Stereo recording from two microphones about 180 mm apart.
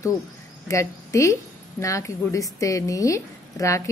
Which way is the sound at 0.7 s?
15° left (ahead or behind).